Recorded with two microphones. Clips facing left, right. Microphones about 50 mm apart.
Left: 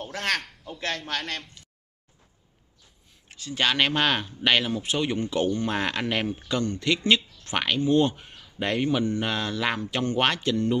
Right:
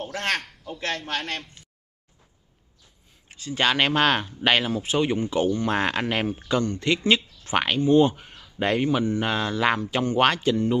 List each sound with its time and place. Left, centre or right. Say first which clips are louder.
0.2 s a man's voice: even; centre
3.3 s speech: right 2 dB; right
5.7 s speech: right 3 dB; right